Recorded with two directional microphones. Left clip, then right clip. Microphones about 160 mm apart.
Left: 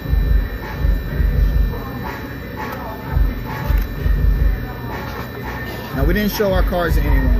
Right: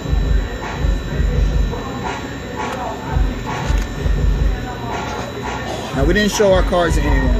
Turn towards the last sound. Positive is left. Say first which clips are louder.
# right 5 dB
turn(degrees=-25)  # may be behind; listen again after turning